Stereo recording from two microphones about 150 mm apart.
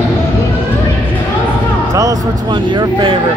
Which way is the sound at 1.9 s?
25° right (ahead or behind).